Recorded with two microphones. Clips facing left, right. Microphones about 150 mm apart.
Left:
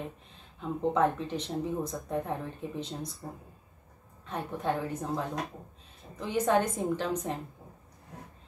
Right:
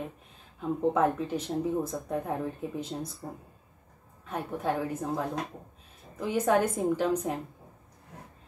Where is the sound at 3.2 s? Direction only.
15° right (ahead or behind).